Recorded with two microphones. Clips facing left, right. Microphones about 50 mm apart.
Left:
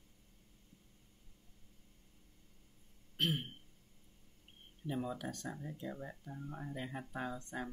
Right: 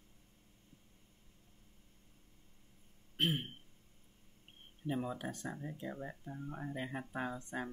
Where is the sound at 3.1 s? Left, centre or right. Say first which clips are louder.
Right 1 dB; centre.